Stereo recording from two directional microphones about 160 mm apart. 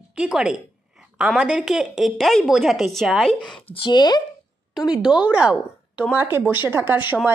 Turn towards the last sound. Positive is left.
turn(degrees=-10)  # may be behind; listen again after turning